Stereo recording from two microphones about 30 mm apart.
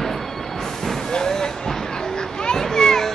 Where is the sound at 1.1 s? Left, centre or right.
Left.